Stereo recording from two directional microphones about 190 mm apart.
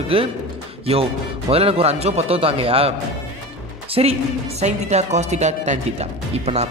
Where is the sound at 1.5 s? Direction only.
30° right (ahead or behind).